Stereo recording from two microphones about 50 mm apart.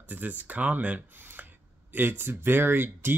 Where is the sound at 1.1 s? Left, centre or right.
Right.